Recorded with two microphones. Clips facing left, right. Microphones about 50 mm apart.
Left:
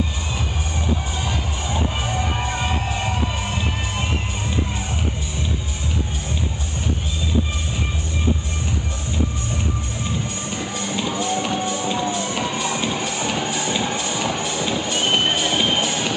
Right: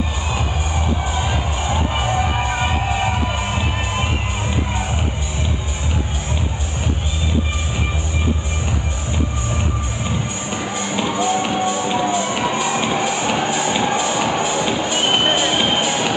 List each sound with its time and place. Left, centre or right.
1.1 s music: centre
10.0 s music: centre